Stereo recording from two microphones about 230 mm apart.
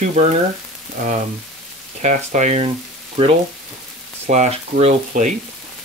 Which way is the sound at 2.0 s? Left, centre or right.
Right.